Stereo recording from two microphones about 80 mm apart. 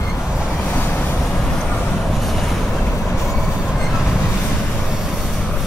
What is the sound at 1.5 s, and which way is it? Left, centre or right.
Vehicle, centre.